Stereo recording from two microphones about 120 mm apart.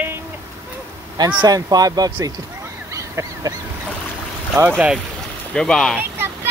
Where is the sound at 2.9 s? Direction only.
25° right (ahead or behind).